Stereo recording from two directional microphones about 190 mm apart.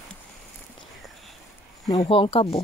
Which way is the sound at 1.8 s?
30° left (ahead or behind).